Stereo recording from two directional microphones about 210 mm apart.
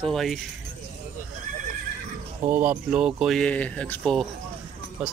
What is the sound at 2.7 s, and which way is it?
Speech, 5° right (ahead or behind).